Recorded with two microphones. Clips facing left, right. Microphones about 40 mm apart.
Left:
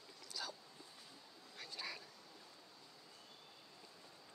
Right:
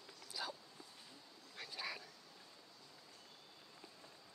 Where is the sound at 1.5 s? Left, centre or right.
Centre.